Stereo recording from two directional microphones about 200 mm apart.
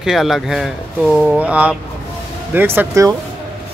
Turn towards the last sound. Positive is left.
turn(degrees=-15)  # may be behind; listen again after turning